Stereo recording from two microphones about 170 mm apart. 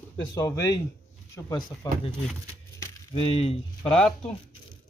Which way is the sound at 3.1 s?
35° left (ahead or behind).